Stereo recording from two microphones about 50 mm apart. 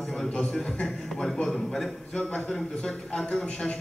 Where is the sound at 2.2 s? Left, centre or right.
Left.